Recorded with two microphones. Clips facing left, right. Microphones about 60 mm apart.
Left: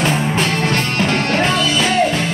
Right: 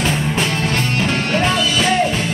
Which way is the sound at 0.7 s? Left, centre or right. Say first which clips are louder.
Left 2 dB; left.